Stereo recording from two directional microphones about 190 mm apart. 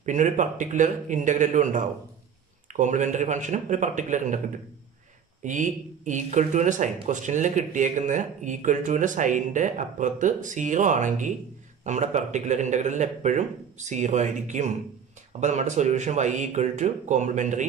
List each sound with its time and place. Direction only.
0.0 s speech: 40° right (ahead or behind)
5.4 s speech: 40° right (ahead or behind)